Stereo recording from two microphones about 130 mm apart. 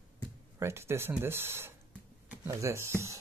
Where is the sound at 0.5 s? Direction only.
20° right (ahead or behind).